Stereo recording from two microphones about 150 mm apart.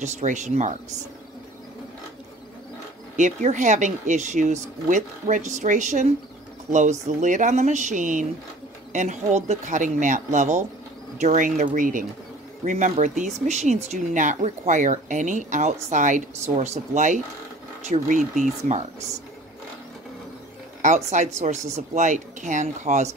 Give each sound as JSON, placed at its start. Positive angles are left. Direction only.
{"t": 0.0, "sound": "speech", "side_deg": -55}
{"t": 3.2, "sound": "speech", "side_deg": -55}
{"t": 20.8, "sound": "speech", "side_deg": -50}